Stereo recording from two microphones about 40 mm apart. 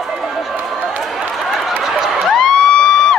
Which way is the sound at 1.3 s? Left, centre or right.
Centre.